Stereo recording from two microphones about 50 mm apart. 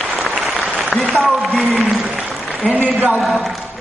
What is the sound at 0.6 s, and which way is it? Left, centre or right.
Applause, right.